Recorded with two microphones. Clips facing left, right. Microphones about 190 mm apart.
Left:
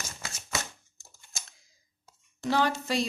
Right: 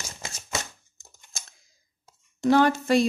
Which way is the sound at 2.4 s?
50° right (ahead or behind).